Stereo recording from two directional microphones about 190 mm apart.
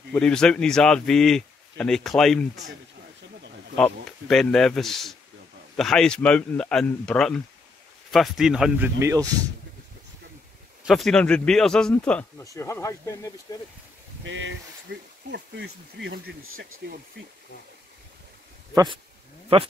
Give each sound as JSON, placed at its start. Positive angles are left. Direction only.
{"t": 0.1, "sound": "a man's voice", "side_deg": 5}
{"t": 3.7, "sound": "a man's voice", "side_deg": 5}
{"t": 9.0, "sound": "speech", "side_deg": -20}
{"t": 10.9, "sound": "a man's voice", "side_deg": 0}
{"t": 14.2, "sound": "speech", "side_deg": -75}
{"t": 19.5, "sound": "speech", "side_deg": -30}